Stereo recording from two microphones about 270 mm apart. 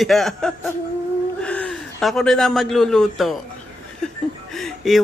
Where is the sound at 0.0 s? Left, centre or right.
Centre.